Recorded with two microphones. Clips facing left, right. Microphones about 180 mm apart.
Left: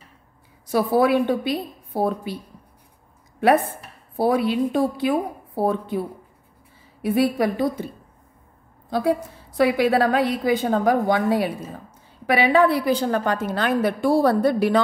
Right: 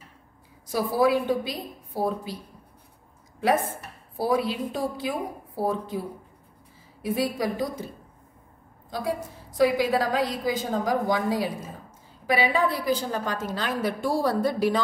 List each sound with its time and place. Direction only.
0.7 s a woman's voice: 60° left (ahead or behind)
3.3 s a woman's voice: 60° left (ahead or behind)
8.9 s a woman's voice: 65° left (ahead or behind)